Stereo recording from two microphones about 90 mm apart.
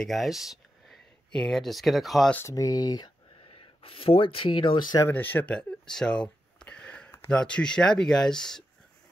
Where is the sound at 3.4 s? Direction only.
90° left; by 4.9 s 60° left (ahead or behind).